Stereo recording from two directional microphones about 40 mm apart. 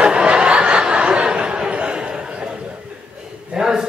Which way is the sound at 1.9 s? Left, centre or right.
Right.